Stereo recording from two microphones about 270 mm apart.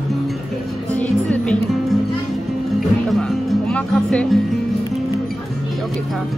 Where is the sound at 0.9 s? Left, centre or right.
Centre.